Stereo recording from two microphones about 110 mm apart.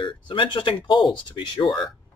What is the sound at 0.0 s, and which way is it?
Speech, 50° left (ahead or behind).